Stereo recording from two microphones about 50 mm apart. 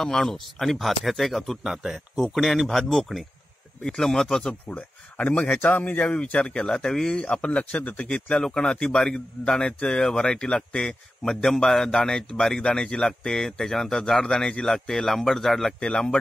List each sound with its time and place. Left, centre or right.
0.0 s speech: centre
1.6 s speech: centre
4.5 s speech: left
6.7 s speech: centre
7.4 s speech: left; by 15.7 s centre
15.8 s speech: centre